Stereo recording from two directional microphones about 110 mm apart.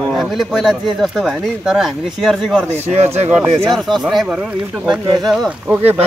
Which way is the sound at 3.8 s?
Centre (ahead or behind).